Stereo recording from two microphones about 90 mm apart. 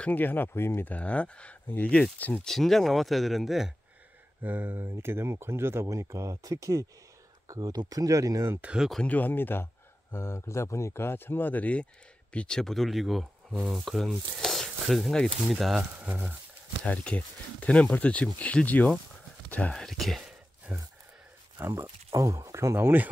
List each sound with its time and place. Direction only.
0.0 s speech: 20° left (ahead or behind)
2.4 s speech: 5° left (ahead or behind)
4.4 s speech: 20° right (ahead or behind); by 8.5 s 40° right (ahead or behind)
8.5 s speech: 10° right (ahead or behind)
9.0 s speech: 20° left (ahead or behind); by 15.8 s centre (ahead or behind)
15.8 s speech: 15° right (ahead or behind)
16.8 s speech: 15° left (ahead or behind)
19.7 s speech: 5° left (ahead or behind)
20.7 s speech: 15° right (ahead or behind)
21.5 s speech: 30° right (ahead or behind)